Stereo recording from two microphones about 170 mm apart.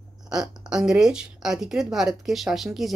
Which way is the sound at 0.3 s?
5° right (ahead or behind).